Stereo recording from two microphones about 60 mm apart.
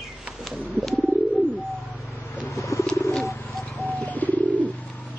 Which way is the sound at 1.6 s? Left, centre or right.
Centre.